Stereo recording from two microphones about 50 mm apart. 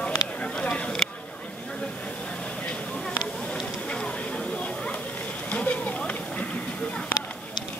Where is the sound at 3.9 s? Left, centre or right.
Left.